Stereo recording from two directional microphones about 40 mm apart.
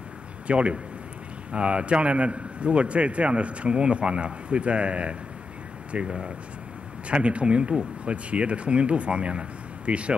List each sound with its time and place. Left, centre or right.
0.5 s a man's voice: right